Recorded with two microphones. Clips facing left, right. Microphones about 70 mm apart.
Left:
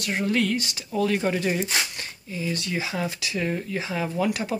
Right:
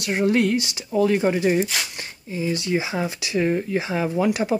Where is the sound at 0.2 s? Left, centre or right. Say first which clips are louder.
Right 5 dB; right.